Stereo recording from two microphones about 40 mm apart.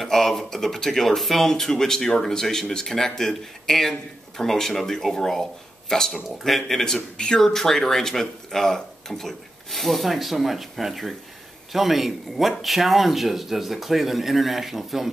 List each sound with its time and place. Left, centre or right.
0.0 s speech: centre
7.2 s speech: left
7.4 s speech: centre